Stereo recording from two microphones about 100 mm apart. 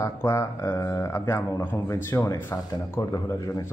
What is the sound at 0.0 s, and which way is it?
Speech, 30° left (ahead or behind).